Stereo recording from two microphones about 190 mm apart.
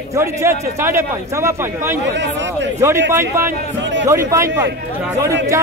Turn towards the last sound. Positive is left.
turn(degrees=-15)  # may be behind; listen again after turning